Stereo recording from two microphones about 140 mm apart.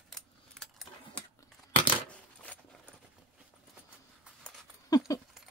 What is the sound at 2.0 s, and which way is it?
Keys jangling, 10° left (ahead or behind).